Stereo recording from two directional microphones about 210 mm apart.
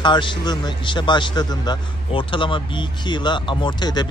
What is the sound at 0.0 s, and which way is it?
A man's voice, 20° left (ahead or behind).